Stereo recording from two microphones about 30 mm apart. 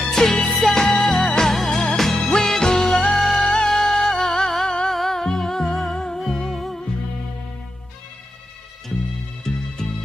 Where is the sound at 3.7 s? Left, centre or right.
Centre.